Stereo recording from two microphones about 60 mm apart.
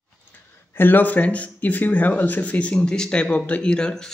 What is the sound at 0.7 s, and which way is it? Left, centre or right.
A man's voice, left.